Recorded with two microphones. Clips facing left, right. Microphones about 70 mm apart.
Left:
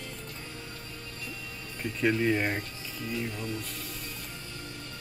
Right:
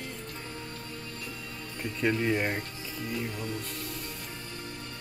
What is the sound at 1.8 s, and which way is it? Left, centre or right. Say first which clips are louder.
Speech: left 1 dB; centre.